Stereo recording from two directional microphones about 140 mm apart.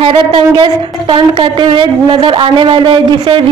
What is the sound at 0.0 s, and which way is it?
A woman's voice, 40° right (ahead or behind).